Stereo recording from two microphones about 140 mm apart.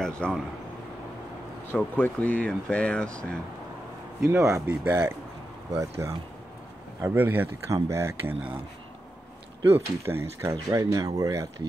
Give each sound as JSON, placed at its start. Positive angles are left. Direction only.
{"t": 0.0, "sound": "speech", "side_deg": 5}
{"t": 1.7, "sound": "speech", "side_deg": 15}
{"t": 4.2, "sound": "speech", "side_deg": -20}
{"t": 10.0, "sound": "speech", "side_deg": -20}